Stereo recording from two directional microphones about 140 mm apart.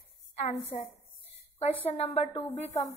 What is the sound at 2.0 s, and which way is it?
Speech, 45° left (ahead or behind).